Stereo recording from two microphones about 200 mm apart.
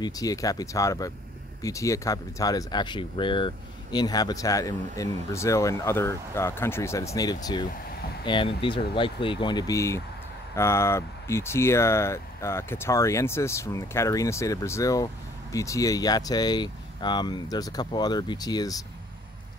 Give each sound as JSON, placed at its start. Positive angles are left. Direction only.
{"t": 0.0, "sound": "speech", "side_deg": 15}